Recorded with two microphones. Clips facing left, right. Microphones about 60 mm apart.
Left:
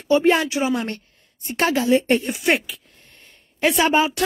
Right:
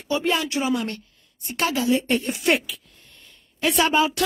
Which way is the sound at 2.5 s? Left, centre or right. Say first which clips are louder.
Left 1 dB; left.